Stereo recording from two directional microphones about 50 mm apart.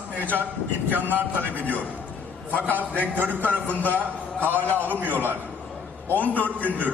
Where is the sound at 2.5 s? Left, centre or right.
Left.